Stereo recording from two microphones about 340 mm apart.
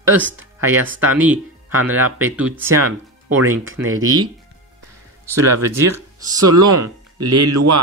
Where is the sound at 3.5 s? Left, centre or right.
Right.